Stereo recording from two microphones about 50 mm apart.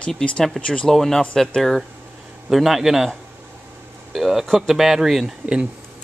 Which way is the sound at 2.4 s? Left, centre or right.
Centre.